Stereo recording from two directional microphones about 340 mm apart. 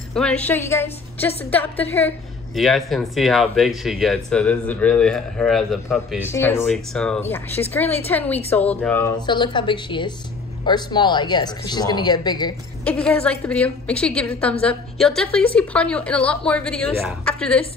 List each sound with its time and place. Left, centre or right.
0.1 s a woman's voice: centre